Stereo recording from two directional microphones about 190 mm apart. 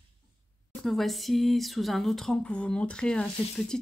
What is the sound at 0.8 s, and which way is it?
Speech, centre (ahead or behind).